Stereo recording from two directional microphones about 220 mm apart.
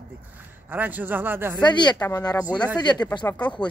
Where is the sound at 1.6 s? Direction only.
20° left (ahead or behind).